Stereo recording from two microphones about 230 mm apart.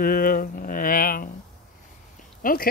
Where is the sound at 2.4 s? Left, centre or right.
Left.